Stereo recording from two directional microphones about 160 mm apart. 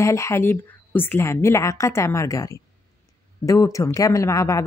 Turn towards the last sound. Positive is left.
turn(degrees=20)  # may be behind; listen again after turning